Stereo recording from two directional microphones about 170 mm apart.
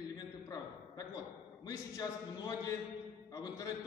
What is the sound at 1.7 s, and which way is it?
A man's voice, 20° left (ahead or behind).